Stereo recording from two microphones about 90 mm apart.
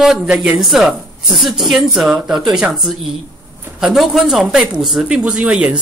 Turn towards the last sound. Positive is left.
turn(degrees=-10)  # may be behind; listen again after turning